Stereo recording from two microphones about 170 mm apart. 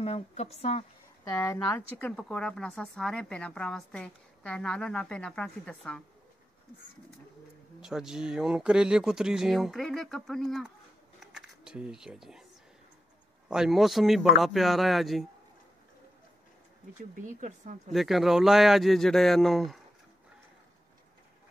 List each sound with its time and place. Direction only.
0.0 s a woman's voice: 35° left (ahead or behind)
1.3 s a woman's voice: 10° left (ahead or behind)
7.8 s a woman's voice: 5° right (ahead or behind)
11.1 s a sound: centre (ahead or behind)
13.5 s a woman's voice: centre (ahead or behind)
17.1 s a woman's voice: 50° right (ahead or behind)
17.9 s a woman's voice: centre (ahead or behind)